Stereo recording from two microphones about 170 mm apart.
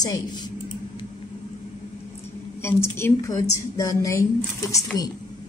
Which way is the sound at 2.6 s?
15° left (ahead or behind).